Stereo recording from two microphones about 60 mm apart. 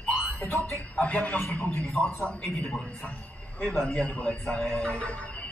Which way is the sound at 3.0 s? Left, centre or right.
Left.